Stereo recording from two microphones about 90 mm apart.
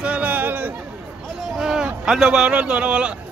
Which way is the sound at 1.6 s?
5° right (ahead or behind).